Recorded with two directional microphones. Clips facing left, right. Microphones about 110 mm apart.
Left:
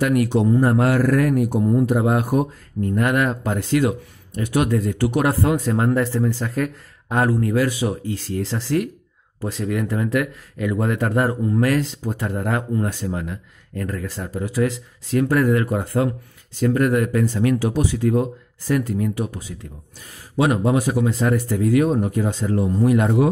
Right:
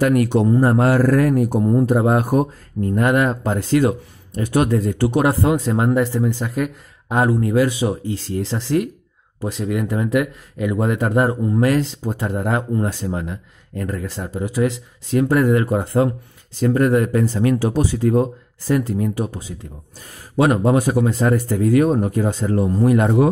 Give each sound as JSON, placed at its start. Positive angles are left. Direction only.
{"t": 0.0, "sound": "speech", "side_deg": -40}
{"t": 20.0, "sound": "speech", "side_deg": -45}